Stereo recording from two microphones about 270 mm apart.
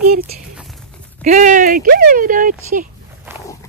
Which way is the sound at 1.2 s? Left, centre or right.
Right.